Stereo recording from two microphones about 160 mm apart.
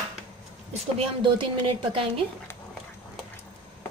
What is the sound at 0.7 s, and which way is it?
A woman's voice, 35° right (ahead or behind).